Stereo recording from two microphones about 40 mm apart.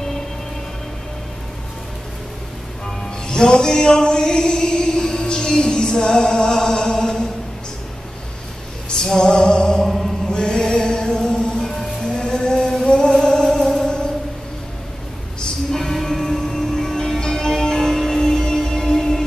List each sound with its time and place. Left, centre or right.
3.3 s a sound: centre
8.8 s music: centre
10.2 s music: centre
15.7 s music: centre